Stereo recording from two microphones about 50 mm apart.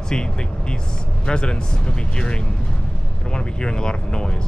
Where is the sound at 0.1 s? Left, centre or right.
Centre.